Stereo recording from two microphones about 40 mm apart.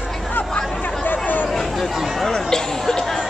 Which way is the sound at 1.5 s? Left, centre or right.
Centre.